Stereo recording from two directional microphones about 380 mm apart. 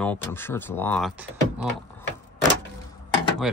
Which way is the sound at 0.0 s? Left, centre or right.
Centre.